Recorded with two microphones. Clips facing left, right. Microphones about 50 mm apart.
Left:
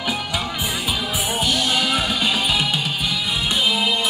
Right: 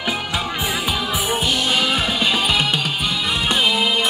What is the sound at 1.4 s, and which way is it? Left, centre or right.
Music, right.